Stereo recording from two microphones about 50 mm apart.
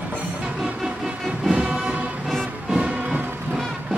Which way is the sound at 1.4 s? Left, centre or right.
Centre.